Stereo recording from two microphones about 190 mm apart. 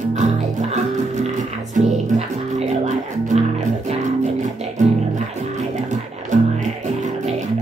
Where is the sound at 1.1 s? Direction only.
40° right (ahead or behind).